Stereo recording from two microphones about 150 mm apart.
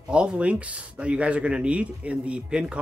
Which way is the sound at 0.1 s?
5° right (ahead or behind).